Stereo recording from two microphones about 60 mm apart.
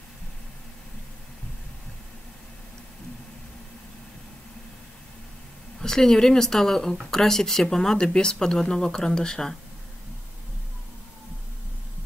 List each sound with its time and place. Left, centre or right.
5.8 s speech: centre